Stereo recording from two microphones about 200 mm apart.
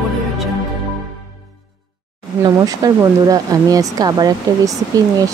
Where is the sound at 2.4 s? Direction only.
20° right (ahead or behind).